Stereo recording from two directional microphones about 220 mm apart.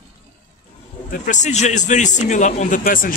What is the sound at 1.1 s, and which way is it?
A man's voice, 35° left (ahead or behind).